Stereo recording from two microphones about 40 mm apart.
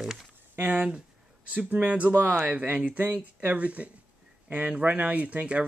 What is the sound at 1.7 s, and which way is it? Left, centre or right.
Speech, right.